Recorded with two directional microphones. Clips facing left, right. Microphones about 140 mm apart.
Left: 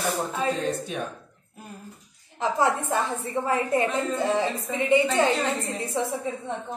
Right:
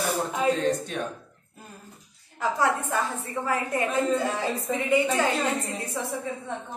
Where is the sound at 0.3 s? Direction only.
15° right (ahead or behind).